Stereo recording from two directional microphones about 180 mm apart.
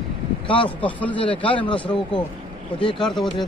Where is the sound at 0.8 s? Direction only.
10° left (ahead or behind).